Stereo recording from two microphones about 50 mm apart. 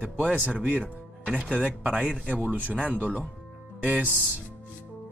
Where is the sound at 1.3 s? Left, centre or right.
Right.